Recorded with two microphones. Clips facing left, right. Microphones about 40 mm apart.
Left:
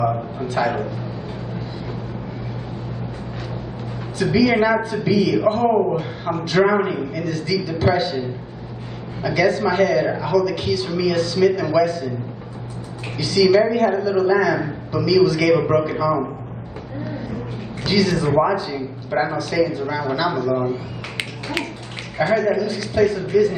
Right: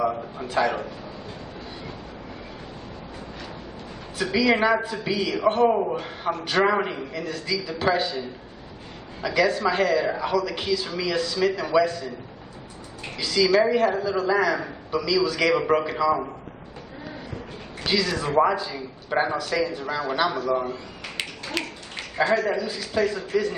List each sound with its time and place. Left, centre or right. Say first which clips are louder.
0.0 s a man's voice: left 4 dB; centre
4.2 s a man's voice: left 4 dB; centre
13.2 s a man's voice: left 5 dB; centre
17.8 s a man's voice: left 6 dB; centre
21.6 s a sound: left 4 dB; centre
22.1 s a man's voice: left 4 dB; centre